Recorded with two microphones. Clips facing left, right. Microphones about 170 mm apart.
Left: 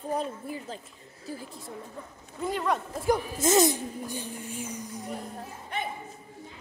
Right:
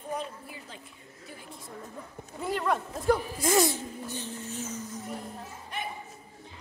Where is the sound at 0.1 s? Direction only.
35° left (ahead or behind).